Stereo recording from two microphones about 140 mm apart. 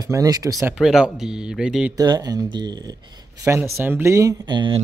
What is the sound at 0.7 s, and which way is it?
Speech, 5° right (ahead or behind).